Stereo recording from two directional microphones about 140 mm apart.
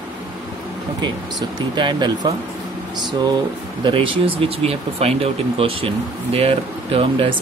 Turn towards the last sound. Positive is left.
turn(degrees=-40)  # may be behind; listen again after turning